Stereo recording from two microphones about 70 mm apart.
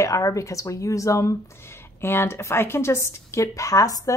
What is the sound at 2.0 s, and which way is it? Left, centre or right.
A woman's voice, left.